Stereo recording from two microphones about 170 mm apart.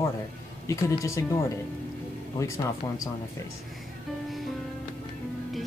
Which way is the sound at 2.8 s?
15° left (ahead or behind).